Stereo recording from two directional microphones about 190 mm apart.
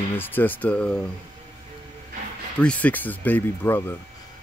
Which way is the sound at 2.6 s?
5° left (ahead or behind).